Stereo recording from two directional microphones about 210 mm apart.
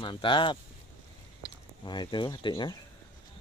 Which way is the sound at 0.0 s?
25° left (ahead or behind).